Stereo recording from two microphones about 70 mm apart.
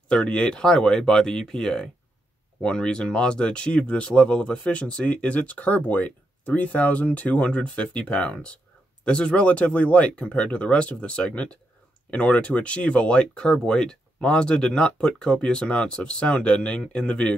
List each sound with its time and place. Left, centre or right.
0.1 s speech: centre